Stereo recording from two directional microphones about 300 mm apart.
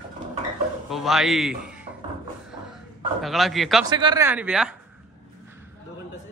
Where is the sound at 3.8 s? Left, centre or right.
Centre.